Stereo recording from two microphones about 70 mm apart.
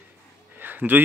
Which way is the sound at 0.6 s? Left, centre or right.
Right.